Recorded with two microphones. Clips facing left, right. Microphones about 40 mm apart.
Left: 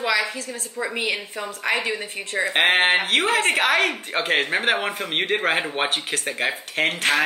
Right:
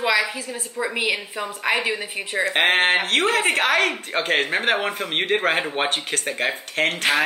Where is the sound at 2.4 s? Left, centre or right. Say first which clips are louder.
Even; centre.